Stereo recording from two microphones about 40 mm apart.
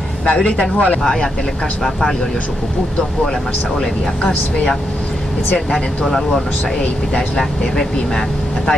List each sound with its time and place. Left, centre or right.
0.2 s speech: left
1.8 s speech: centre
5.7 s speech: centre